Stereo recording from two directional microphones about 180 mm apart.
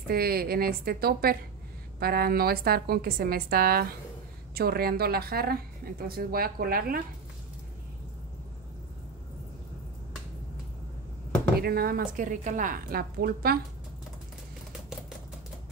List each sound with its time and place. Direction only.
0.1 s a woman's voice: 55° right (ahead or behind)
11.6 s a woman's voice: 55° right (ahead or behind)